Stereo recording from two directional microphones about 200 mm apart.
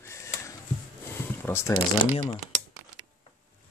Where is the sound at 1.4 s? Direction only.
15° left (ahead or behind).